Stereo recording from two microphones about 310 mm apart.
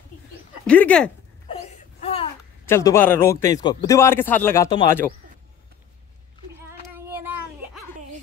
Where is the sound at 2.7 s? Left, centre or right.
Centre.